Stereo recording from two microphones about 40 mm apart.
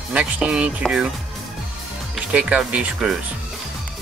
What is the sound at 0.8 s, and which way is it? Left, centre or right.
Speech, centre.